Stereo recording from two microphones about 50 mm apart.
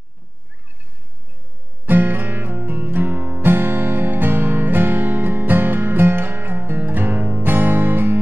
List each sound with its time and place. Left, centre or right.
1.9 s music: right